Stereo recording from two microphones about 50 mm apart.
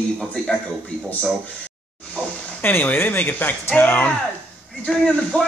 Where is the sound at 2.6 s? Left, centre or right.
Left.